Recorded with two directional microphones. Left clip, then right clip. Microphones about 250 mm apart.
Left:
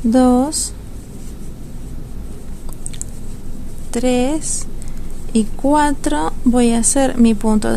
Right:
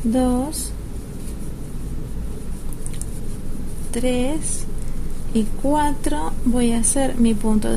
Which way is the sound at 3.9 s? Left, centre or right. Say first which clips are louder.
Left 5 dB; left.